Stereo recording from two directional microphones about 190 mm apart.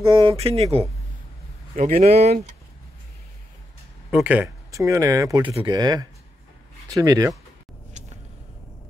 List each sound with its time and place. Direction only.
0.2 s speech: 30° right (ahead or behind)
1.8 s speech: 40° right (ahead or behind)
4.1 s speech: 5° right (ahead or behind)